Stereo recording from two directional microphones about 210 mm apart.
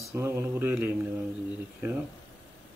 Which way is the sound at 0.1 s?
10° right (ahead or behind).